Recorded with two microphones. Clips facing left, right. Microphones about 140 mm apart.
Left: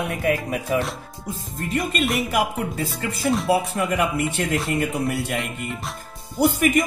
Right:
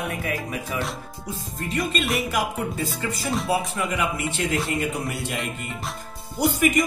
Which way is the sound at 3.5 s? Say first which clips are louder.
Left 4 dB; 60° left (ahead or behind).